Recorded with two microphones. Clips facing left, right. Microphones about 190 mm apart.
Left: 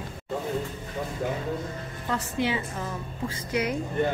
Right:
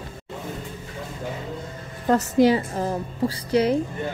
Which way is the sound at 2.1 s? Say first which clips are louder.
Right 10 dB; 40° right (ahead or behind).